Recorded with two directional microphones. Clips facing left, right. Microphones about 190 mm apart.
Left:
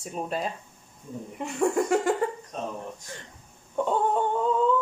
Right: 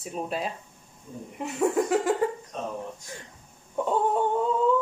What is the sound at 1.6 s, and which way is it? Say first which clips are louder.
Speech: even; centre (ahead or behind).